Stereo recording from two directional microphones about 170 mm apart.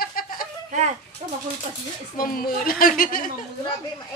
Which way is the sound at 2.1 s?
60° left (ahead or behind).